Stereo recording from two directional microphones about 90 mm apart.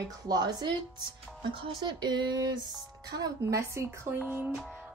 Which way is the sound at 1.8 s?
55° right (ahead or behind).